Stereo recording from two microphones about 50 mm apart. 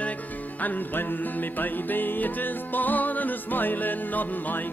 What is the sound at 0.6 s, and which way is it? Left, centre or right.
Music, left.